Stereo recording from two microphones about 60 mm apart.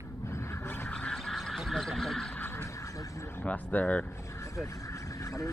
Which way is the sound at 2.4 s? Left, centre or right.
Left.